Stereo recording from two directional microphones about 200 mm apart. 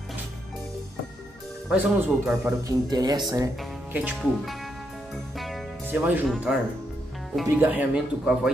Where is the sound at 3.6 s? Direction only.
5° right (ahead or behind).